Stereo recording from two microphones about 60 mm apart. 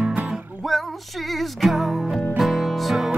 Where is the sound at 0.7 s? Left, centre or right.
Centre.